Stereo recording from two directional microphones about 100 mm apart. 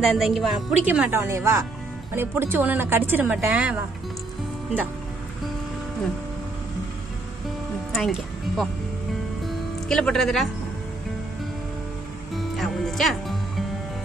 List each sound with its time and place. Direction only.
0.0 s a woman's voice: 5° right (ahead or behind)
0.8 s speech: 15° right (ahead or behind)
1.1 s speech: 25° right (ahead or behind)
7.9 s music: centre (ahead or behind)
9.8 s a woman's voice: 5° left (ahead or behind)
12.4 s music: centre (ahead or behind)